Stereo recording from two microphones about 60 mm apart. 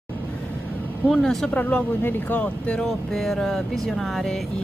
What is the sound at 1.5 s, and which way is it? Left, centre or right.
Speech, left.